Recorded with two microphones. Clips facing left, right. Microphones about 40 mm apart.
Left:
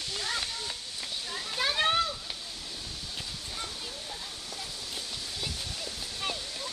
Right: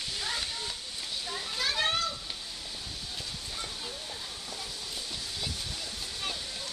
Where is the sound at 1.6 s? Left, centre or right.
Centre.